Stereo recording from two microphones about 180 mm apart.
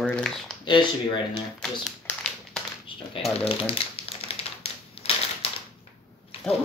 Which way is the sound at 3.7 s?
35° left (ahead or behind).